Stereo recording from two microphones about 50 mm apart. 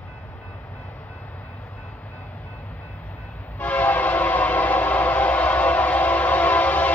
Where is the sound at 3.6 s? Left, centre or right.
Left.